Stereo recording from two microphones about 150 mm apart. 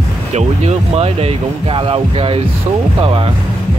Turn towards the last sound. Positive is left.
turn(degrees=-40)  # may be behind; listen again after turning